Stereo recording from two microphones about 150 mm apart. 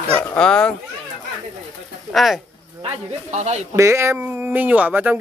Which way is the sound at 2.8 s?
50° right (ahead or behind).